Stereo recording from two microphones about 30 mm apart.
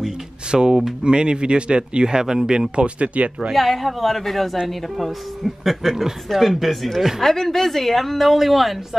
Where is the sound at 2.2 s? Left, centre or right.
Right.